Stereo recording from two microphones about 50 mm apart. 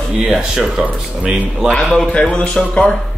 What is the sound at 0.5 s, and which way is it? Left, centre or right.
Speech, centre.